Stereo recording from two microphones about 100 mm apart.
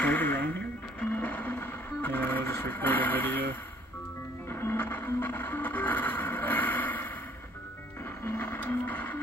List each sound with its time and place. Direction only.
0.0 s music: 20° left (ahead or behind)
4.5 s music: 25° left (ahead or behind)
8.3 s a sound: 20° left (ahead or behind)